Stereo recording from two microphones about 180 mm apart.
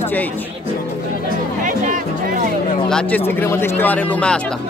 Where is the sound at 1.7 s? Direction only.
45° right (ahead or behind).